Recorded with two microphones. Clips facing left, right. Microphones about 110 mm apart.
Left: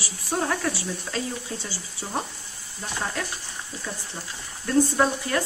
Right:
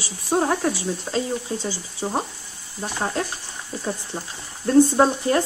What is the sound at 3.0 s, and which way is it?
Speech, 30° right (ahead or behind).